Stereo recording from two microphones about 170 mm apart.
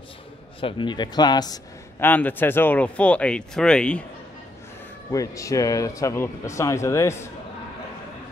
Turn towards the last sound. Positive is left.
turn(degrees=15)  # may be behind; listen again after turning